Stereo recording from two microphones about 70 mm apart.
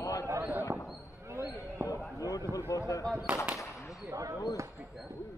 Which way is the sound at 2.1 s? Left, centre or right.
Left.